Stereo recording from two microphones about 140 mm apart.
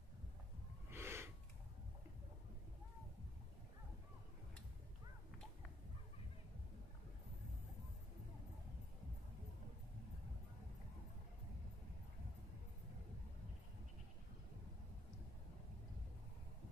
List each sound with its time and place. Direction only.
0.8 s gasp: 15° right (ahead or behind)